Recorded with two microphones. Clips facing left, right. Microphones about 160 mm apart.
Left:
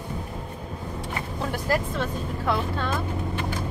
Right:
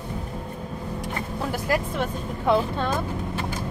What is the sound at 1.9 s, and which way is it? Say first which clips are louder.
Speech: right 1 dB; 15° right (ahead or behind).